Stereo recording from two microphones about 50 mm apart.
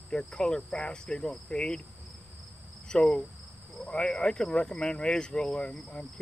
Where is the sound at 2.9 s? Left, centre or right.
Centre.